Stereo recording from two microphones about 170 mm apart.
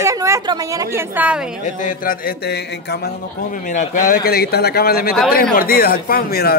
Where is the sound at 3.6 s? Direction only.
50° left (ahead or behind).